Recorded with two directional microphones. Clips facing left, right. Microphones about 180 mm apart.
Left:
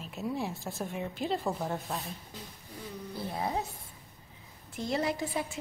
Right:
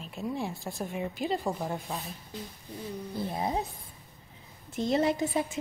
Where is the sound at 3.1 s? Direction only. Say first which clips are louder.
Right 2 dB; 20° right (ahead or behind).